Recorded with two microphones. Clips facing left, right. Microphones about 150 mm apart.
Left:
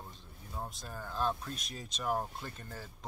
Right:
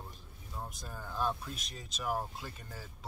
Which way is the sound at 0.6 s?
25° left (ahead or behind).